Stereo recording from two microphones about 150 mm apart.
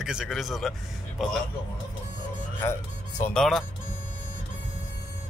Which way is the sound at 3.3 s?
Centre (ahead or behind).